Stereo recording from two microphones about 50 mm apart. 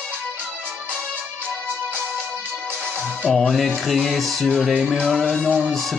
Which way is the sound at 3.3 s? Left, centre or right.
Centre.